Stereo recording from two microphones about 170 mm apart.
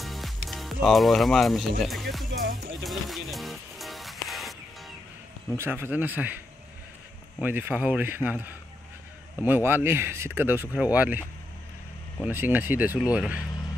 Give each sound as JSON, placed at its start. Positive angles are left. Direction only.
{"t": 0.0, "sound": "music", "side_deg": 0}
{"t": 0.5, "sound": "speech", "side_deg": 0}
{"t": 2.8, "sound": "music", "side_deg": 0}
{"t": 5.6, "sound": "speech", "side_deg": -10}
{"t": 12.3, "sound": "speech", "side_deg": -10}